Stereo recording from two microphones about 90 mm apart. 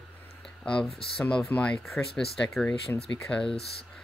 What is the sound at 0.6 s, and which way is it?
Speech, 10° left (ahead or behind).